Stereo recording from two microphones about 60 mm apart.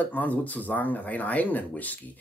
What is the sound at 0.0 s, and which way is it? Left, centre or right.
Speech, left.